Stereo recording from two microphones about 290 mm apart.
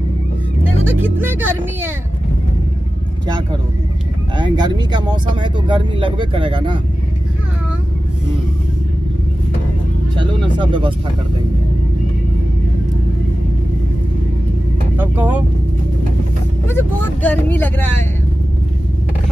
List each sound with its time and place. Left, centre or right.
0.8 s speech: centre
4.4 s speech: centre
10.1 s a sound: centre
15.0 s speech: centre
16.6 s speech: centre